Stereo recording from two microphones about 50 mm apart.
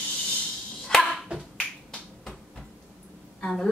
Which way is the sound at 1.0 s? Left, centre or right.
Centre.